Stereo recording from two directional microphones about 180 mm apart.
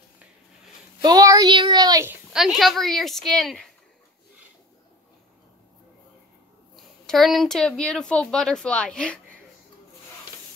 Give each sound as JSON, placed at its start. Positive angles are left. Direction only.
{"t": 1.0, "sound": "a sound", "side_deg": -20}
{"t": 2.3, "sound": "speech", "side_deg": 0}
{"t": 7.1, "sound": "speech", "side_deg": 0}